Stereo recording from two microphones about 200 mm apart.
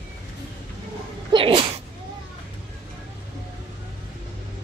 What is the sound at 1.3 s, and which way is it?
Sneeze, 25° right (ahead or behind).